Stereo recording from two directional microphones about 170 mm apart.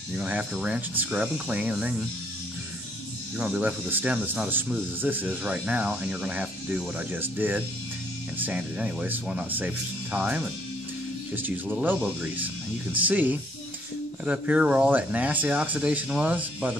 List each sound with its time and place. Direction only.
0.2 s speech: 5° right (ahead or behind)
3.3 s speech: 5° right (ahead or behind)